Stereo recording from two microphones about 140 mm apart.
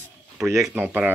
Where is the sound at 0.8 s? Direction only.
10° right (ahead or behind).